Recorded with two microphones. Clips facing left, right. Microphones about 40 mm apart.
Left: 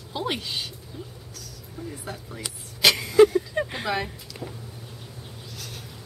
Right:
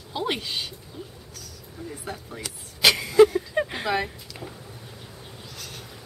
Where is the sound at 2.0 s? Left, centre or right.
Centre.